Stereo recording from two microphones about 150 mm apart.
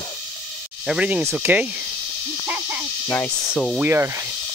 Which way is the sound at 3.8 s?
15° right (ahead or behind).